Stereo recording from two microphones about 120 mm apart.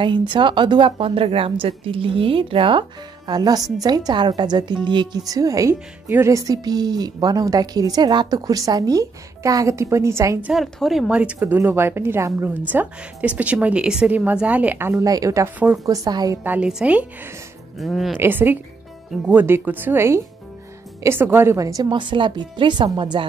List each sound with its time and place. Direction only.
0.3 s a woman's voice: 40° right (ahead or behind)
3.3 s speech: 35° right (ahead or behind)
10.4 s a woman's voice: centre (ahead or behind); by 15.0 s 15° right (ahead or behind)
15.0 s speech: 30° right (ahead or behind)
16.4 s a woman's voice: 5° right (ahead or behind)
18.1 s a woman's voice: 15° right (ahead or behind); by 23.2 s 40° right (ahead or behind)